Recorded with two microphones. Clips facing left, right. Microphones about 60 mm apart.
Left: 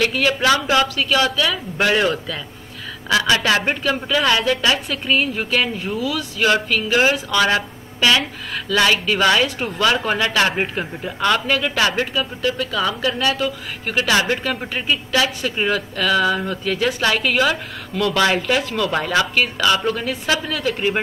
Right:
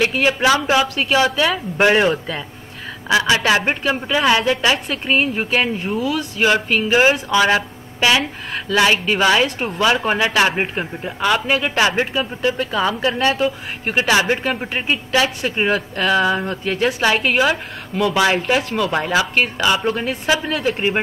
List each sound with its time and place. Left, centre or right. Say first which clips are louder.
0.0 s a man's voice: right 1 dB; right
5.9 s speech: right 2 dB; right
6.4 s a man's voice: right 1 dB; right
19.3 s a man's voice: even; right